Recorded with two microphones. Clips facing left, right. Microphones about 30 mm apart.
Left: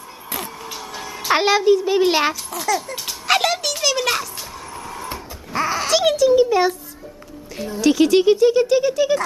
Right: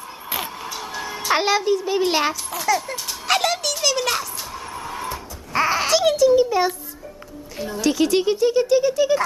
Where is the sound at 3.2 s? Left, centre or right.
Centre.